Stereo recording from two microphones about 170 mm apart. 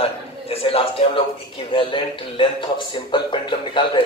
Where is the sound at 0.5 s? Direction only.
35° left (ahead or behind).